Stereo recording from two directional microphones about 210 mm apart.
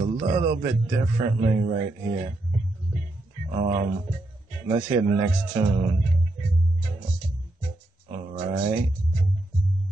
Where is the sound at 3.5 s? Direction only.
30° right (ahead or behind).